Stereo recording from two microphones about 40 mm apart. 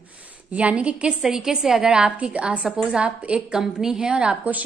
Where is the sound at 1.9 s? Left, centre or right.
Right.